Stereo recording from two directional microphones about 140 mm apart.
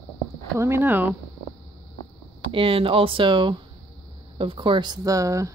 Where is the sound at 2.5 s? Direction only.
40° right (ahead or behind); by 5.5 s 20° right (ahead or behind).